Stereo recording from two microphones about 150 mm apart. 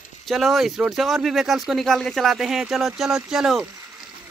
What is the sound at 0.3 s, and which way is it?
Speech, centre (ahead or behind).